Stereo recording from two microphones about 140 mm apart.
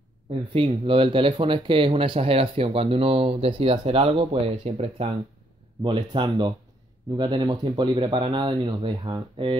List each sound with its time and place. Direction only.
0.3 s speech: 45° right (ahead or behind)
5.8 s speech: 30° right (ahead or behind)